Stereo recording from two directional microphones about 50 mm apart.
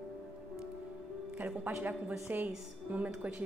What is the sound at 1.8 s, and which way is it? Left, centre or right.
A woman's voice, right.